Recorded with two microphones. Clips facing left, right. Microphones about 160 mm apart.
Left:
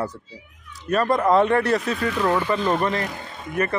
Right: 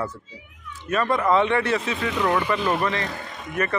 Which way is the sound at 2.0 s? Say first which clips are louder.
Left 2 dB; 20° right (ahead or behind).